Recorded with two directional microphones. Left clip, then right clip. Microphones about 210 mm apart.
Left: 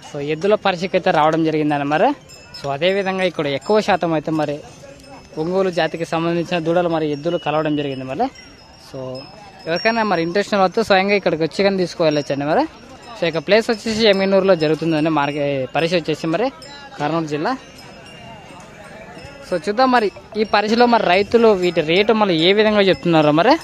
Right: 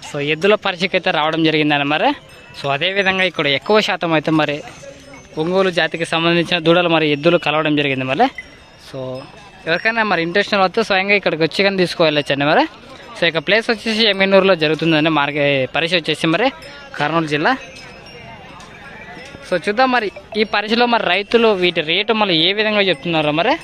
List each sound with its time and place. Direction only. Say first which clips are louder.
0.1 s speech: right 3 dB; centre (ahead or behind)
19.5 s speech: even; 5° left (ahead or behind)
22.8 s speech: left 2 dB; 30° left (ahead or behind)